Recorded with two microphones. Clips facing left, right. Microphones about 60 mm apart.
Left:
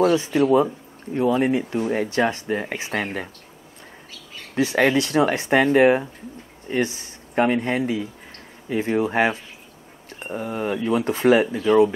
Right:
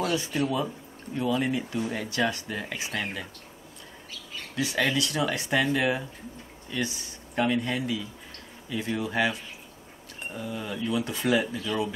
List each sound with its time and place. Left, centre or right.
0.0 s speech: left
4.6 s speech: left